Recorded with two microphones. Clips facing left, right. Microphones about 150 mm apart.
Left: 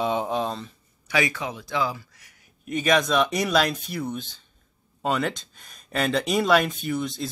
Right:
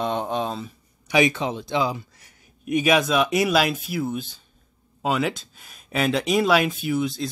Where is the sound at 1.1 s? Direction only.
20° right (ahead or behind).